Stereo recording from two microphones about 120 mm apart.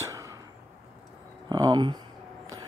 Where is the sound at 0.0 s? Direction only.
25° right (ahead or behind).